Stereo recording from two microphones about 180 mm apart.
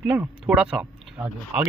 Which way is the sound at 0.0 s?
10° right (ahead or behind).